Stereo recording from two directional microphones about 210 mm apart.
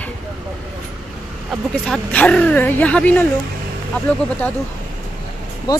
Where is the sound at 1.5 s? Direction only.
5° left (ahead or behind).